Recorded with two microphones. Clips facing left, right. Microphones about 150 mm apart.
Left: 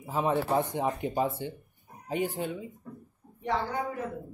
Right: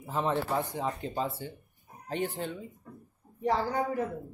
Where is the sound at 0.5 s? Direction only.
20° left (ahead or behind).